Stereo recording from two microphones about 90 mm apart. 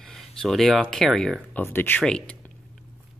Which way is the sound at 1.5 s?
25° left (ahead or behind).